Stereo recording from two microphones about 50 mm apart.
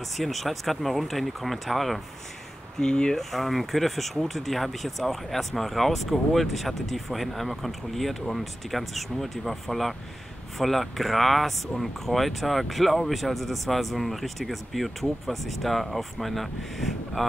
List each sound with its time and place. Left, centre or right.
0.2 s speech: centre
2.8 s speech: centre
3.2 s speech: centre